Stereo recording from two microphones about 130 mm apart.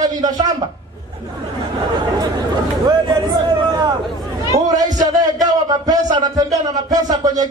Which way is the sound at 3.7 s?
35° right (ahead or behind).